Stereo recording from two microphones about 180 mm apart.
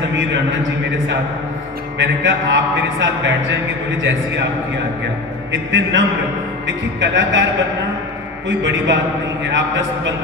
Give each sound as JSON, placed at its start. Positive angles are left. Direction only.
{"t": 0.1, "sound": "music", "side_deg": -85}
{"t": 2.0, "sound": "music", "side_deg": -80}
{"t": 5.5, "sound": "music", "side_deg": -90}
{"t": 7.0, "sound": "speech", "side_deg": -90}
{"t": 8.5, "sound": "music", "side_deg": -85}
{"t": 9.5, "sound": "speech", "side_deg": -90}